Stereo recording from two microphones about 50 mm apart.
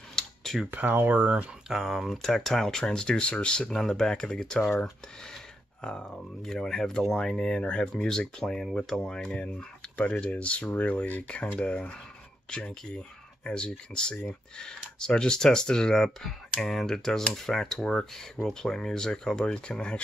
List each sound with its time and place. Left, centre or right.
0.1 s a sound: centre
0.7 s speech: right
1.7 s speech: centre; by 3.7 s left
3.7 s speech: centre
5.8 s speech: centre